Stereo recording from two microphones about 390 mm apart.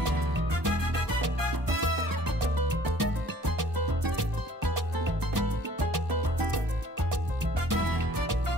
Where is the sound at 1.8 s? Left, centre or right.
Right.